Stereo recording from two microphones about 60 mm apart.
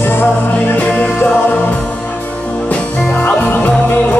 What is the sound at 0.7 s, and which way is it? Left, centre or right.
Music, left.